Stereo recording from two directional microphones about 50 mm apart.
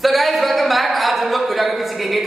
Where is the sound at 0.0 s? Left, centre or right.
Centre.